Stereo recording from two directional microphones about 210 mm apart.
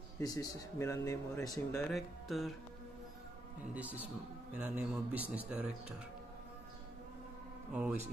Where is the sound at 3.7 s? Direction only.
5° right (ahead or behind).